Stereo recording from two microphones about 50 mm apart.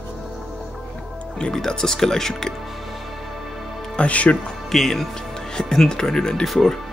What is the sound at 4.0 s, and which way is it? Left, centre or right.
Speech, left.